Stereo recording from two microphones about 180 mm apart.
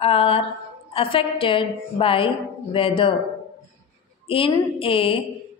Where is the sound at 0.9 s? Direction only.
30° left (ahead or behind).